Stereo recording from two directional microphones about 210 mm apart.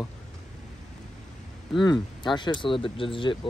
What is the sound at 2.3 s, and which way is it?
Speech, 20° left (ahead or behind).